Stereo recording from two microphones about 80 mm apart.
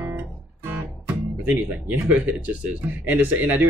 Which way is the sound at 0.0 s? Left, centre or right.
Right.